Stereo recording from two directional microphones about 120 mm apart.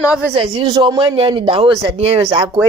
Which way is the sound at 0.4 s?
40° right (ahead or behind).